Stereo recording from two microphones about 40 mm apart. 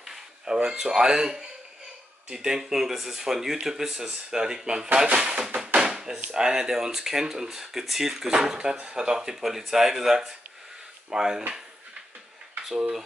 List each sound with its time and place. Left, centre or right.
0.0 s a sound: centre
0.6 s speech: centre
5.8 s door: centre
6.3 s speech: centre